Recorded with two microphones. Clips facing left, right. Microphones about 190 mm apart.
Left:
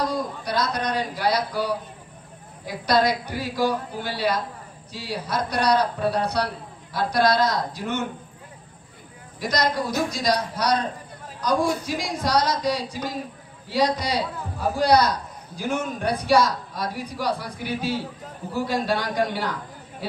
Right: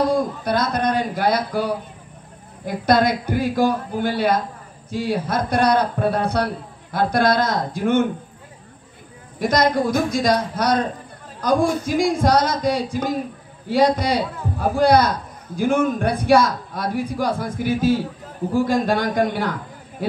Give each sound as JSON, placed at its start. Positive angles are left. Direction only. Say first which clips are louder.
{"t": 0.1, "sound": "a man's voice", "louder": "right 6 dB", "side_deg": -50}
{"t": 9.4, "sound": "a man's voice", "louder": "right 6 dB", "side_deg": -50}